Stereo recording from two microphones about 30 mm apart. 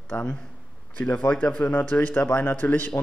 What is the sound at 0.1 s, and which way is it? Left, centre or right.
Speech, left.